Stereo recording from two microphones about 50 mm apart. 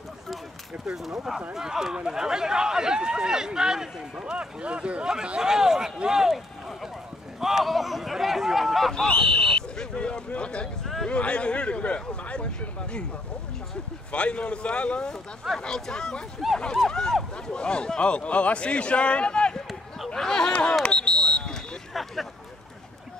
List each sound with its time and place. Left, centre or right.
0.8 s speech: centre
9.0 s speech: centre
14.1 s speech: left
20.2 s speech: centre
20.8 s a sound: left
21.9 s hubbub: centre